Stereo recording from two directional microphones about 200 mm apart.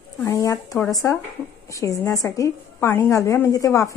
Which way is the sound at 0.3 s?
15° left (ahead or behind).